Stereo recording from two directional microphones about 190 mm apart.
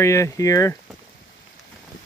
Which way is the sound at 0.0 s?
15° left (ahead or behind).